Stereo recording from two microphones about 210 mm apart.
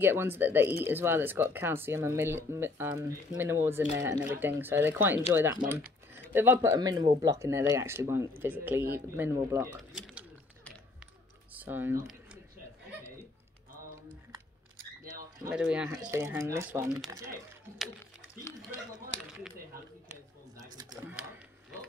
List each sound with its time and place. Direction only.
0.0 s speech: 10° right (ahead or behind)
9.9 s bird: centre (ahead or behind)
11.5 s speech: 10° right (ahead or behind)
15.5 s speech: 5° right (ahead or behind)
15.9 s speech: 15° right (ahead or behind)
18.5 s speech: 15° left (ahead or behind)
20.5 s typing: 15° right (ahead or behind)